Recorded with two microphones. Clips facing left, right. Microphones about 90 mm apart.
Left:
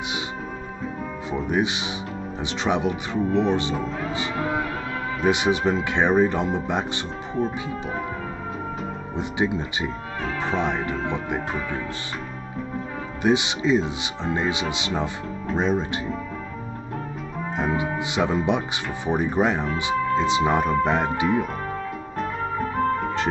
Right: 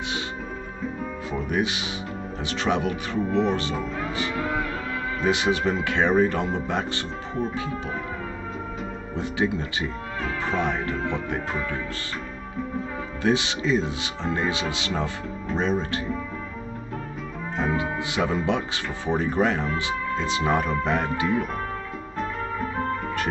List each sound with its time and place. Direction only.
1.3 s speech: 20° left (ahead or behind)
9.1 s speech: 20° left (ahead or behind)
13.2 s speech: 20° left (ahead or behind)
17.6 s speech: 20° left (ahead or behind)